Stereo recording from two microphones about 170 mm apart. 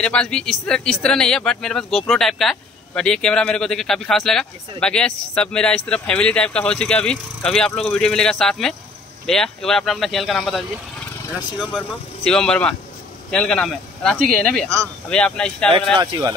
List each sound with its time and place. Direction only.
0.0 s speech: 5° left (ahead or behind)
12.3 s speech: 5° left (ahead or behind)
16.0 s speech: 25° right (ahead or behind)